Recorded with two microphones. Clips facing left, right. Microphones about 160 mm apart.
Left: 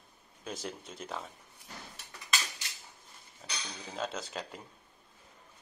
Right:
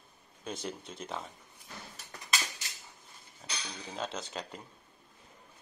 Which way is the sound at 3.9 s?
Centre (ahead or behind).